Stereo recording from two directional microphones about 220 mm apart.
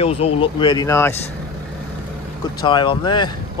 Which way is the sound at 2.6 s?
20° left (ahead or behind).